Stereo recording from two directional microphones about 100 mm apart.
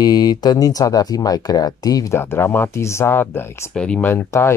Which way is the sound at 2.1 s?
25° left (ahead or behind).